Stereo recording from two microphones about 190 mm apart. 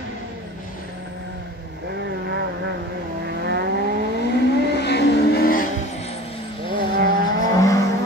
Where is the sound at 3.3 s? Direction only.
60° right (ahead or behind).